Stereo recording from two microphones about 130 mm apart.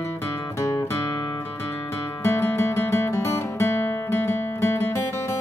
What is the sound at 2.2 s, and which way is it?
Music, 15° left (ahead or behind).